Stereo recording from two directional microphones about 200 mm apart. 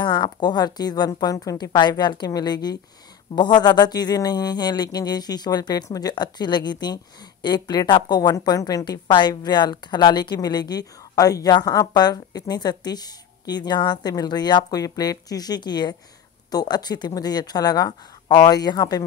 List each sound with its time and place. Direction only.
0.0 s a woman's voice: 20° left (ahead or behind)